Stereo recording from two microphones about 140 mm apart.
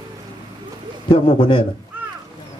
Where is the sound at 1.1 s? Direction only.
35° left (ahead or behind).